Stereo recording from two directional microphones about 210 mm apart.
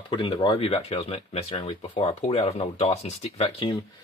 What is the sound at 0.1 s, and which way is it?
Speech, 20° left (ahead or behind).